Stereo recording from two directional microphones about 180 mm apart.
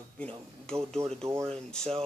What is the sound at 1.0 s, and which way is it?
Speech, 15° right (ahead or behind).